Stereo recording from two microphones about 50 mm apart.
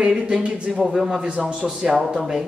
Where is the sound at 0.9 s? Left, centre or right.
Centre.